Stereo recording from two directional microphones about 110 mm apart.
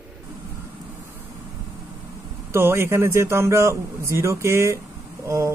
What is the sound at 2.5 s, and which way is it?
Speech, 20° right (ahead or behind).